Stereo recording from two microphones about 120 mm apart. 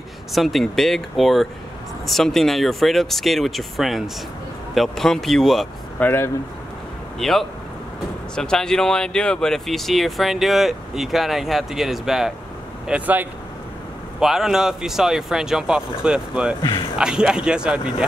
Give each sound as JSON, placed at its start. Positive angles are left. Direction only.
{"t": 0.3, "sound": "speech", "side_deg": 0}
{"t": 5.9, "sound": "speech", "side_deg": 20}
{"t": 7.2, "sound": "speech", "side_deg": 5}
{"t": 14.2, "sound": "speech", "side_deg": -5}